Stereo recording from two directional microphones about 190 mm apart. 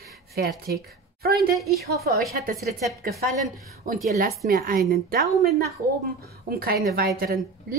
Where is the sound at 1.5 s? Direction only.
Centre (ahead or behind).